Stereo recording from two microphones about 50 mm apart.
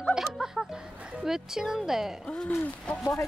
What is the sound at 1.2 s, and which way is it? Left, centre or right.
Speech, centre.